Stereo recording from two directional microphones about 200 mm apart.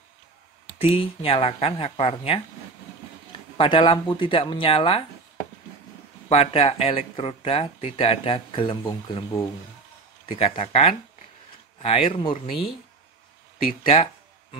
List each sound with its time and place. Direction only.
0.7 s speech: 30° left (ahead or behind)
3.5 s speech: 25° left (ahead or behind)
6.2 s speech: 30° left (ahead or behind)